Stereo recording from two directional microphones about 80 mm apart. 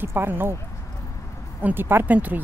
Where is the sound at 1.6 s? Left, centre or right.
Right.